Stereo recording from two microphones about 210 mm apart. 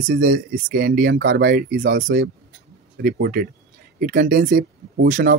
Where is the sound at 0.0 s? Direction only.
40° right (ahead or behind).